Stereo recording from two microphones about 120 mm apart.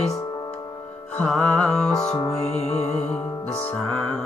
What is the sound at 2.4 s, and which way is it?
Music, 65° left (ahead or behind).